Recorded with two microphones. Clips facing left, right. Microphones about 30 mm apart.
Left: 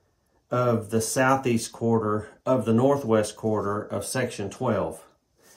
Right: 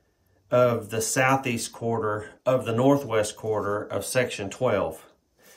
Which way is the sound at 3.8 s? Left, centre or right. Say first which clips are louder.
Right 1 dB; right.